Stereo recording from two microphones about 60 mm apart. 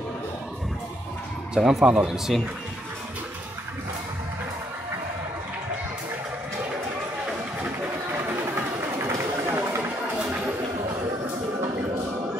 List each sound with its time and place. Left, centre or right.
1.5 s speech: centre
1.9 s speech: centre
2.1 s speech: centre
8.2 s a sound: right